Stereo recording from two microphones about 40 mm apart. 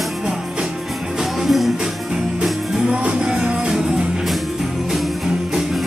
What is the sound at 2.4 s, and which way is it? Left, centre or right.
Music, right.